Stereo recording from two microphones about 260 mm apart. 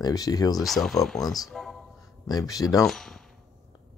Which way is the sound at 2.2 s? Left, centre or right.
Centre.